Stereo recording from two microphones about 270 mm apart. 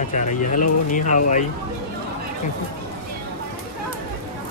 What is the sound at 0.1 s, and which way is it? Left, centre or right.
Speech, left.